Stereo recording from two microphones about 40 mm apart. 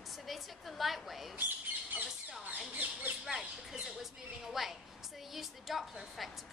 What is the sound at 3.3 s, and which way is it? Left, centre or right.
A woman's voice, centre.